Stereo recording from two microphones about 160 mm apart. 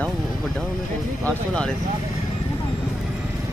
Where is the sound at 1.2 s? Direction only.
5° left (ahead or behind).